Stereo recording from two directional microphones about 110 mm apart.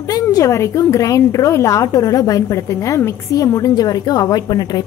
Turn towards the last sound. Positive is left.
turn(degrees=40)  # may be behind; listen again after turning